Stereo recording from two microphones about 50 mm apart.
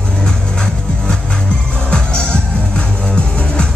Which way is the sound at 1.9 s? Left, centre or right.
Centre.